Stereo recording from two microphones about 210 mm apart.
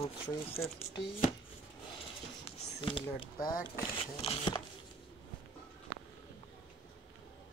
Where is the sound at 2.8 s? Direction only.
25° left (ahead or behind).